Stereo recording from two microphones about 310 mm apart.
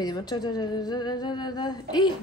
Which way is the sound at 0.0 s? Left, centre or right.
Centre.